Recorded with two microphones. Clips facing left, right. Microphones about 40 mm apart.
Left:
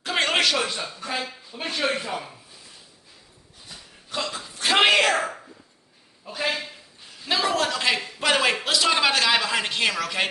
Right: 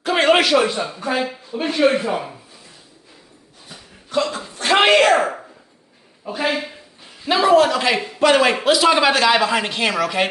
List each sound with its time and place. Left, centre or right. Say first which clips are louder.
0.0 s speech: right 7 dB; centre
2.0 s speech: right 8 dB; right
4.1 s speech: right 9 dB; centre
4.6 s a sound: right 5 dB; centre
6.2 s a man's voice: right 6 dB; centre